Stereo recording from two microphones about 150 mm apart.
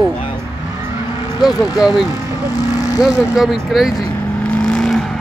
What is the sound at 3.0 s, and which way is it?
Speech, 5° right (ahead or behind).